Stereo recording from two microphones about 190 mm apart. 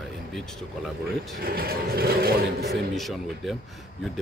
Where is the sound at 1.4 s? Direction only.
50° right (ahead or behind).